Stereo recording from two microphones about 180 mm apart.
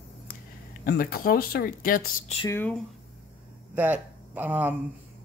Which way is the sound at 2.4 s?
10° left (ahead or behind).